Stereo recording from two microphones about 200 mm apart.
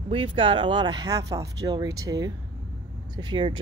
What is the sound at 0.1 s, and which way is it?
A man's voice, 25° right (ahead or behind).